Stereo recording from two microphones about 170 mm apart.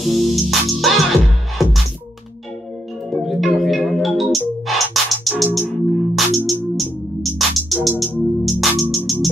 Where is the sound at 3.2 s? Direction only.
Centre (ahead or behind).